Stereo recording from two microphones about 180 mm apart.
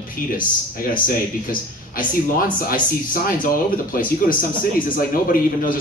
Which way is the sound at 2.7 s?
50° left (ahead or behind).